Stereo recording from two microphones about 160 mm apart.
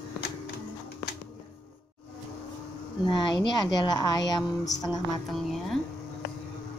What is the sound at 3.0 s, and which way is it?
A woman's voice, 25° left (ahead or behind).